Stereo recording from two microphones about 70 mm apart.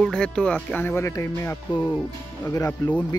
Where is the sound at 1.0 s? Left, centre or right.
Left.